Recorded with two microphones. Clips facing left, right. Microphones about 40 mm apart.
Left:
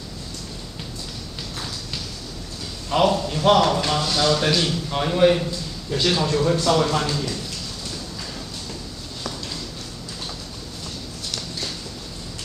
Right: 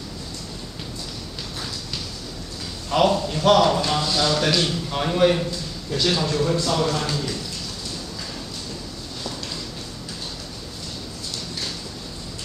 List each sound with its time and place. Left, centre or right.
2.9 s a man's voice: centre
7.1 s a man's voice: centre